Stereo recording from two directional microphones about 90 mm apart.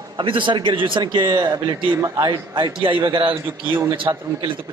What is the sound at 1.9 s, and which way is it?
Speech, 35° right (ahead or behind).